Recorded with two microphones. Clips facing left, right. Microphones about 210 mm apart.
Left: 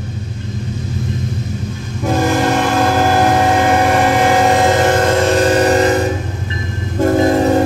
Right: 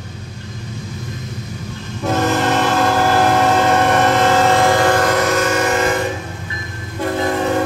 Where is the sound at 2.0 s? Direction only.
10° left (ahead or behind).